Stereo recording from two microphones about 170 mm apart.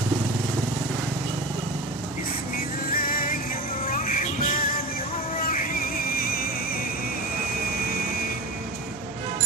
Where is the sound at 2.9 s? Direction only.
55° left (ahead or behind).